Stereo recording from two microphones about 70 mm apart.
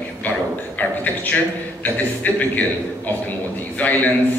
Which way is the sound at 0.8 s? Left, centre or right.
Left.